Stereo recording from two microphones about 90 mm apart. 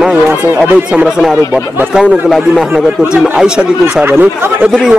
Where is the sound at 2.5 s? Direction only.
10° right (ahead or behind).